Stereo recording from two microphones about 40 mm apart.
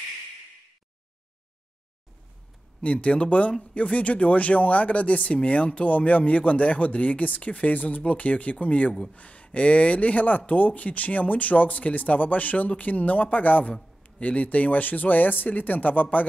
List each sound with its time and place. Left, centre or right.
2.8 s speech: left